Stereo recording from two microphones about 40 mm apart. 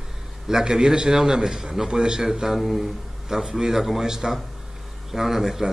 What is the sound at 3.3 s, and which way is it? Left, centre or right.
A man's voice, centre.